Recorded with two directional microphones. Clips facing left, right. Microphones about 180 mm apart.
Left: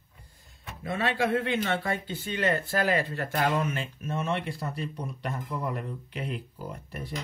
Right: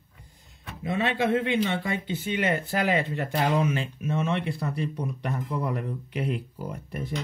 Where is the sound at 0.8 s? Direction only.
20° right (ahead or behind).